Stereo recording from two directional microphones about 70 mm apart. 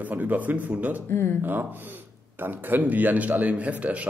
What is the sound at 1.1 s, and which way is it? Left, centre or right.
Speech, left.